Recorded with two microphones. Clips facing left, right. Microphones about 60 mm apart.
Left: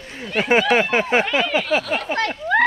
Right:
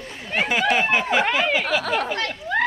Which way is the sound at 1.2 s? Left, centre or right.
Right.